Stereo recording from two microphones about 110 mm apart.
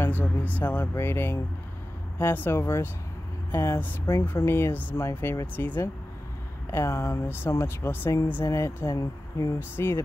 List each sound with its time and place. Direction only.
0.0 s speech: 20° left (ahead or behind)